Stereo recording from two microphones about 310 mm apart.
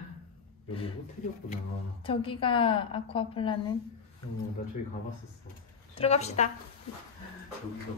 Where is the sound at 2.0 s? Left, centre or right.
Centre.